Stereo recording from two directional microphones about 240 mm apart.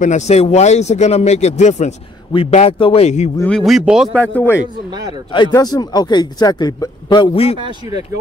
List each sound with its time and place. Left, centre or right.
0.0 s speech: left
3.3 s speech: centre; by 7.5 s left